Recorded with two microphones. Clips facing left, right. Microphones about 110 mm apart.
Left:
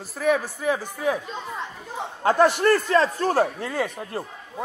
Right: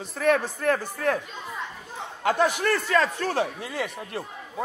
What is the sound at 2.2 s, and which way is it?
Speech, 35° left (ahead or behind).